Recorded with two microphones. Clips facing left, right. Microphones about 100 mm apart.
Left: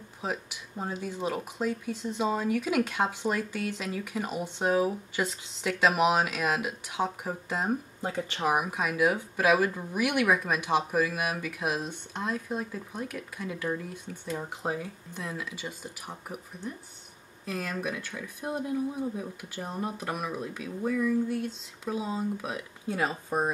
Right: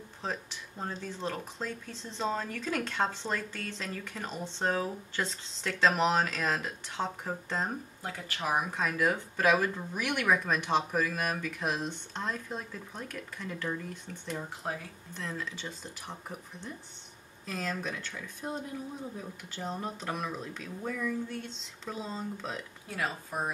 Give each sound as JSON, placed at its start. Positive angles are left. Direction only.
{"t": 0.2, "sound": "speech", "side_deg": 10}
{"t": 8.1, "sound": "speech", "side_deg": 25}
{"t": 22.8, "sound": "speech", "side_deg": 25}